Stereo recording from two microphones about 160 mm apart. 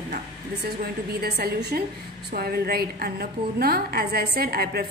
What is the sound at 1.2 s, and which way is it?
A woman's voice, 75° right (ahead or behind).